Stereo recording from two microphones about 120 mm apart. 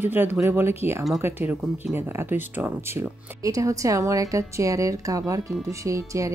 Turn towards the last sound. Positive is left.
turn(degrees=-25)  # may be behind; listen again after turning